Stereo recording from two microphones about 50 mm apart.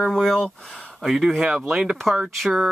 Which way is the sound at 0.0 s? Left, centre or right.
Centre.